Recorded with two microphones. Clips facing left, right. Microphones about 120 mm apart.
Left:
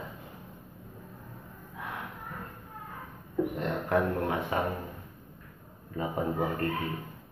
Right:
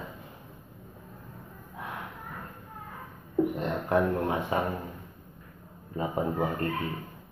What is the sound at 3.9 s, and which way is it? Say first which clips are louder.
Speech: right 2 dB; 25° right (ahead or behind).